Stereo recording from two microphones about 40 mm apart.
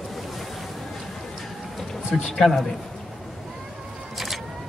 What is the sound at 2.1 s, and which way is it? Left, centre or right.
Speech, centre.